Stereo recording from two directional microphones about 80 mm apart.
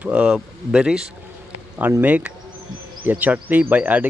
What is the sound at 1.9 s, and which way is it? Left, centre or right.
Speech, right.